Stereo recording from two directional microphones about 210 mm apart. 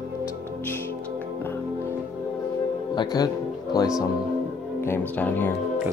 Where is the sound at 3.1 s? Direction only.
20° left (ahead or behind).